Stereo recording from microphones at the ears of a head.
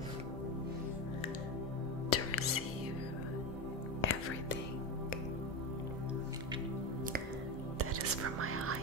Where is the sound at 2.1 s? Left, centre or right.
Left.